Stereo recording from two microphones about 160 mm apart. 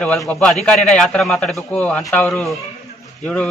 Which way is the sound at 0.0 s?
5° left (ahead or behind).